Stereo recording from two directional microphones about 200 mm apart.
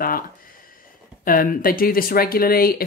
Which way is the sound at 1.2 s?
45° left (ahead or behind).